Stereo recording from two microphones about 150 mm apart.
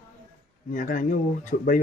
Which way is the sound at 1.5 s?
75° left (ahead or behind).